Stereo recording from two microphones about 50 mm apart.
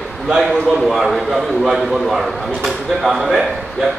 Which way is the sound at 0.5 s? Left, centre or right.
Centre.